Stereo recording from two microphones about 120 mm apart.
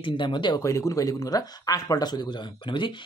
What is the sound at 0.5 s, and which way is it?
Speech, 25° left (ahead or behind).